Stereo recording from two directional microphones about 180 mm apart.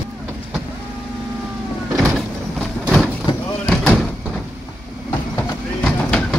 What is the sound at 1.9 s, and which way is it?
Vehicle, centre (ahead or behind).